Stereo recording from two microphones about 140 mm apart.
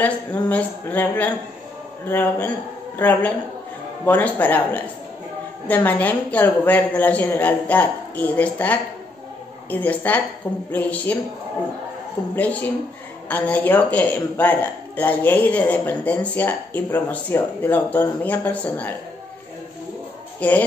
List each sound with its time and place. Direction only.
0.0 s speech: 10° left (ahead or behind)
12.2 s speech: 20° left (ahead or behind)
20.3 s speech: 10° left (ahead or behind)